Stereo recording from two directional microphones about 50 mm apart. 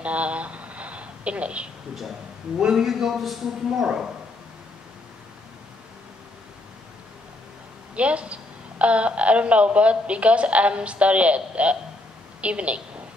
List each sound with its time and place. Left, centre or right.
0.0 s a sound: right
2.8 s a man's voice: centre
7.9 s a woman's voice: right